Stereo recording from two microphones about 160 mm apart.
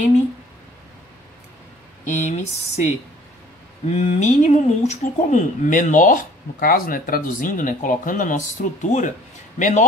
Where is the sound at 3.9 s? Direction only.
45° left (ahead or behind).